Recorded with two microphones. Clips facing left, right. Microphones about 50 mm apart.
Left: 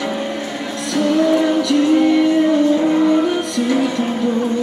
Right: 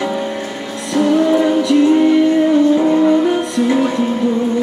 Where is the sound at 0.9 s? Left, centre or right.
Right.